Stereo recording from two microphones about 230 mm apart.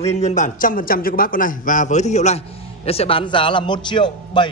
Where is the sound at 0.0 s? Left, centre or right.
Left.